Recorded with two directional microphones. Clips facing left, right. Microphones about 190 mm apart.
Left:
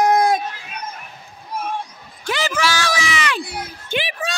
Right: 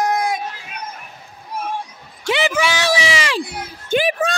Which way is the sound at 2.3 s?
15° right (ahead or behind).